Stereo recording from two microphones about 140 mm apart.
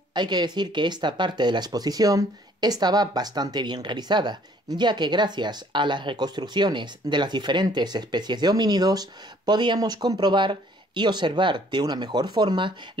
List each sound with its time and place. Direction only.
0.1 s speech: 30° right (ahead or behind)